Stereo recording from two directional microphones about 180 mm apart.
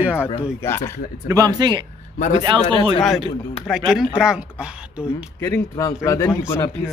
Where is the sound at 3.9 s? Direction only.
5° right (ahead or behind).